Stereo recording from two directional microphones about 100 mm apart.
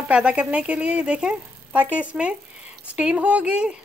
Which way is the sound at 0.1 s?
15° right (ahead or behind).